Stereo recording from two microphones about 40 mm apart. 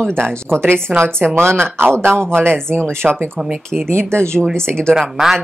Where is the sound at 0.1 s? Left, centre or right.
Right.